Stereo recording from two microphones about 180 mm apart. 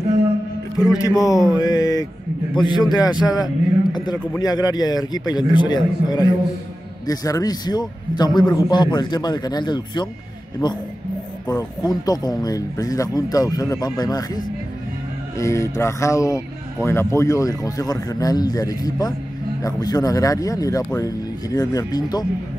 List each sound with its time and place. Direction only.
0.7 s speech: 20° left (ahead or behind)